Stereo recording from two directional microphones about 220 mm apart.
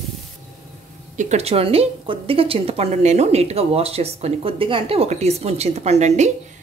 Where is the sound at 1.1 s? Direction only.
30° right (ahead or behind).